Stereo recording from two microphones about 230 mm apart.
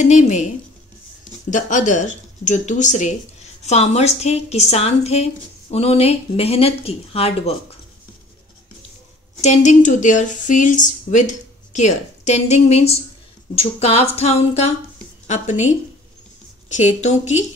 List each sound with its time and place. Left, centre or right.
0.0 s speech: left
1.5 s a woman's voice: left
9.4 s a woman's voice: left